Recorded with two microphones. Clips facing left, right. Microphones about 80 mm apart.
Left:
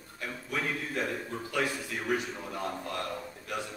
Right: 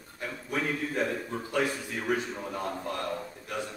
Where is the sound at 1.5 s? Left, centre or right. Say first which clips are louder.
Right 2 dB; right.